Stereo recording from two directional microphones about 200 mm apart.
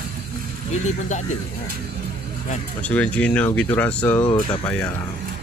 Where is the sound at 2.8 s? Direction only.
5° left (ahead or behind).